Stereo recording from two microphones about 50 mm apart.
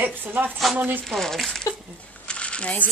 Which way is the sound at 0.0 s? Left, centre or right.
Right.